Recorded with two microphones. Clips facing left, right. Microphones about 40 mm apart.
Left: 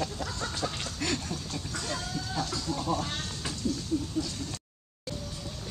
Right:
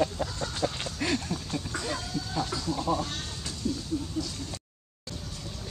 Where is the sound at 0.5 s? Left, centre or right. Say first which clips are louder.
Right 3 dB; centre.